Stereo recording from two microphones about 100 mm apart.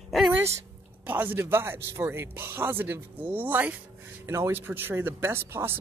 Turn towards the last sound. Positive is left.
turn(degrees=-25)  # may be behind; listen again after turning